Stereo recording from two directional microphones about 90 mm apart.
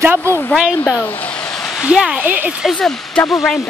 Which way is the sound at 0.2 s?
25° left (ahead or behind).